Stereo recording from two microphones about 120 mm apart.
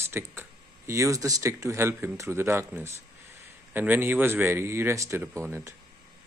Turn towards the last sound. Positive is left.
turn(degrees=-20)  # may be behind; listen again after turning